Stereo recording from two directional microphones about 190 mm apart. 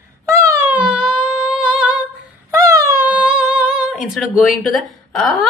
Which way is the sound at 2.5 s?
15° right (ahead or behind).